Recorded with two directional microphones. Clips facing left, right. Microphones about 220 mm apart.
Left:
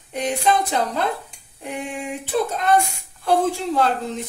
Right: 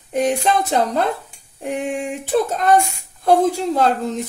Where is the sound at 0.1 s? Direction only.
45° right (ahead or behind).